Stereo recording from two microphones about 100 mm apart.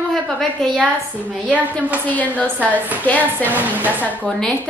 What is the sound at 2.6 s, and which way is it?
A woman's voice, 15° right (ahead or behind).